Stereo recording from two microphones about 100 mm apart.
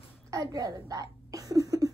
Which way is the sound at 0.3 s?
35° right (ahead or behind).